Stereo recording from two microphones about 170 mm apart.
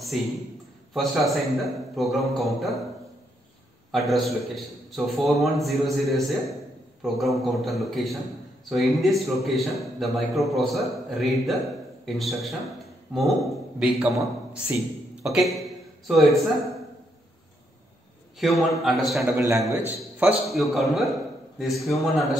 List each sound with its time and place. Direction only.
0.1 s a man's voice: centre (ahead or behind)
4.1 s a man's voice: centre (ahead or behind)
15.3 s a man's voice: centre (ahead or behind)
18.4 s a man's voice: centre (ahead or behind)
19.2 s a man's voice: 15° right (ahead or behind); by 22.3 s centre (ahead or behind)